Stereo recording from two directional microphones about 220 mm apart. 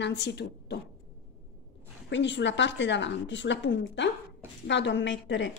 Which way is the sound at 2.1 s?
55° left (ahead or behind).